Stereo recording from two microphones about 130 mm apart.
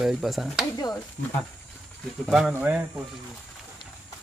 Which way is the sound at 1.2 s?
90° left.